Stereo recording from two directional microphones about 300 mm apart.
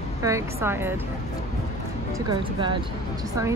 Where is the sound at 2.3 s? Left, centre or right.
Centre.